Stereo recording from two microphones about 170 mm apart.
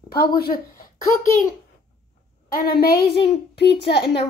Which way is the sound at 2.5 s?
65° left (ahead or behind).